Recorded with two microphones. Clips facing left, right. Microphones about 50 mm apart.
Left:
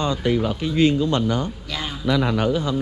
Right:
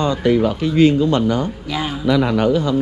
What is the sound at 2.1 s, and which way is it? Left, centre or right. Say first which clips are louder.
Speech: right 4 dB; right.